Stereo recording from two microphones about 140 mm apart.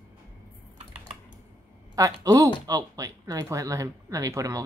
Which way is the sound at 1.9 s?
25° right (ahead or behind).